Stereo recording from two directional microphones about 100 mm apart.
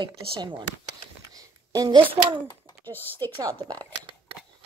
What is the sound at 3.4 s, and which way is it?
Speech, 40° right (ahead or behind).